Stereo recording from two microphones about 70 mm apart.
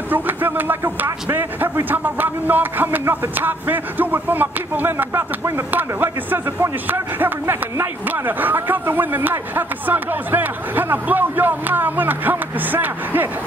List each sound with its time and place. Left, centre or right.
0.1 s speech: right